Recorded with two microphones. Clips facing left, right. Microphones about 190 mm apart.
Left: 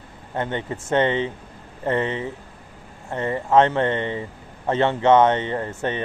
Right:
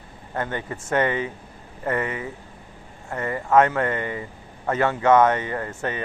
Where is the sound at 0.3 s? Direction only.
25° left (ahead or behind).